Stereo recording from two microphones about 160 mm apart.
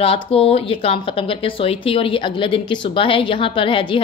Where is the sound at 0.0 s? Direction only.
35° left (ahead or behind).